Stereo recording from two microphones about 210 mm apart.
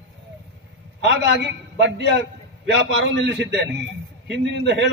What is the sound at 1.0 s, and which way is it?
A man's voice, 55° right (ahead or behind).